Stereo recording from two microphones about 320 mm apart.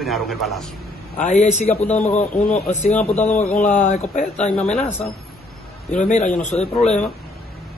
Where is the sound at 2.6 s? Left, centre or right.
Left.